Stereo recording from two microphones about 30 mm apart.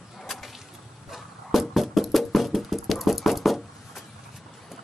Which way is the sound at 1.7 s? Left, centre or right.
Centre.